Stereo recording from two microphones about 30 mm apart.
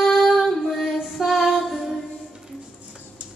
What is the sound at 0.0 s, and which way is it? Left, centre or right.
Female singing, centre.